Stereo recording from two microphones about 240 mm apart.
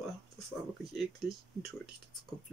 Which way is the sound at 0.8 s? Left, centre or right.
Centre.